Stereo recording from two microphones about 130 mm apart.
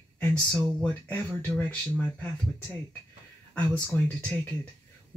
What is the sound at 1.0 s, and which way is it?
Speech, 15° left (ahead or behind).